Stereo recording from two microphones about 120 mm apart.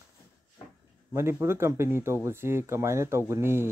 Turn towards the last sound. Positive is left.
turn(degrees=-20)  # may be behind; listen again after turning